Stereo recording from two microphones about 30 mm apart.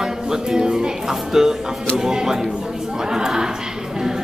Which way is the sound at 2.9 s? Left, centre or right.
Right.